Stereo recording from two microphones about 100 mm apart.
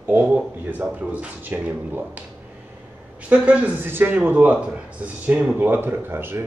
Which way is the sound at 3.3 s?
15° right (ahead or behind).